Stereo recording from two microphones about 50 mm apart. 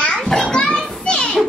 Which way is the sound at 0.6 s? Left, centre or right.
Left.